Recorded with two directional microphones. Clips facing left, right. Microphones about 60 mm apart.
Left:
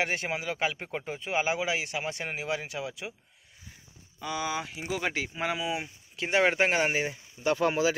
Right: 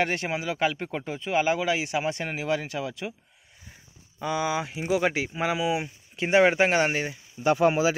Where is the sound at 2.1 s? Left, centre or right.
Centre.